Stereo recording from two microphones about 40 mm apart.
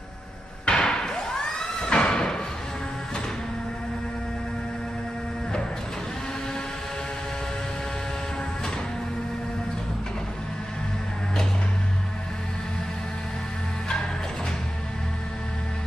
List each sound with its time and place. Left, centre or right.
0.7 s thump: centre